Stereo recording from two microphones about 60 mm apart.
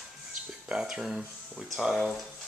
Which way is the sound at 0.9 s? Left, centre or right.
Centre.